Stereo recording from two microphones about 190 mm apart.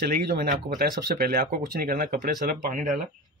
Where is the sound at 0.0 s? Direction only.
50° right (ahead or behind).